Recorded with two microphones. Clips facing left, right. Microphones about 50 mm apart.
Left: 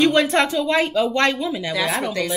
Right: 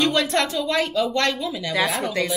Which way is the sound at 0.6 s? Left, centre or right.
Centre.